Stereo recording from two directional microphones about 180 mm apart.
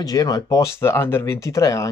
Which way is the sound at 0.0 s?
20° left (ahead or behind).